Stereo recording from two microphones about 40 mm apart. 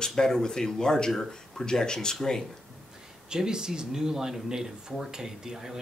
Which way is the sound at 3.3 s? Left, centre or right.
Centre.